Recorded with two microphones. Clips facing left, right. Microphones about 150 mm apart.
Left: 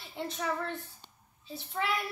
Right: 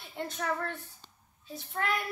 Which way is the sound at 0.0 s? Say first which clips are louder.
Even; centre (ahead or behind).